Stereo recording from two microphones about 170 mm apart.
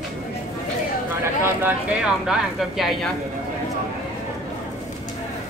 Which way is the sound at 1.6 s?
5° right (ahead or behind).